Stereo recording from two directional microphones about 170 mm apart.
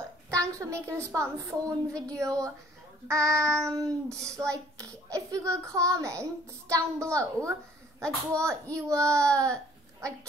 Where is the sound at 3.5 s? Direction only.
5° left (ahead or behind).